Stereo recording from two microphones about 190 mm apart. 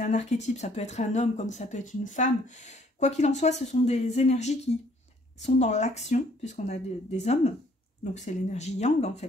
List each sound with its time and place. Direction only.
0.0 s speech: 40° left (ahead or behind)